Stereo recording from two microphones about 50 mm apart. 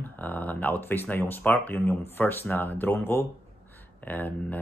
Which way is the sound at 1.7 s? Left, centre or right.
Left.